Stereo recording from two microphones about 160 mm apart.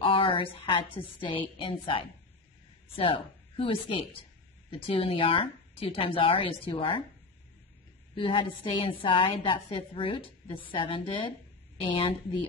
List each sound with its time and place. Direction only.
0.0 s a sound: 35° left (ahead or behind)
1.0 s a woman's voice: 25° left (ahead or behind)
1.6 s a woman's voice: 35° left (ahead or behind)
8.1 s a woman's voice: 30° left (ahead or behind)